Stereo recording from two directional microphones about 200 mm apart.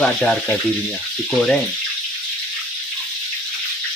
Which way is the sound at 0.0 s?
5° left (ahead or behind).